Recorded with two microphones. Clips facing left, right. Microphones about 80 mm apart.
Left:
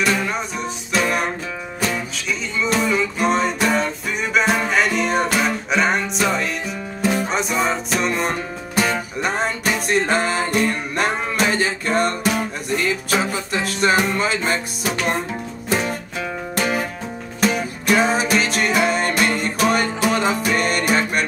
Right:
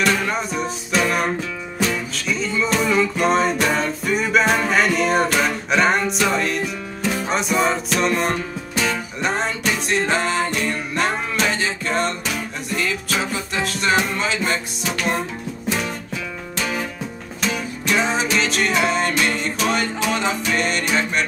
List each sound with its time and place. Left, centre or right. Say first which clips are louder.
0.0 s music: right 1 dB; centre
12.2 s music: left 5 dB; left
12.7 s music: left 3 dB; centre
17.9 s music: left 3 dB; centre